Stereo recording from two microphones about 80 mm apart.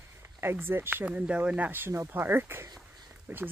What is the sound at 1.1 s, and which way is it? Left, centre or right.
Speech, centre.